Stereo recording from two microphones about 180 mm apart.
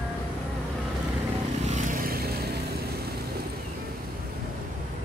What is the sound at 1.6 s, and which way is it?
Vehicle, 45° right (ahead or behind).